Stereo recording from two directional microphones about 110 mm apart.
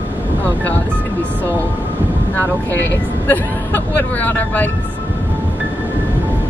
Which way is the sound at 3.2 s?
15° left (ahead or behind).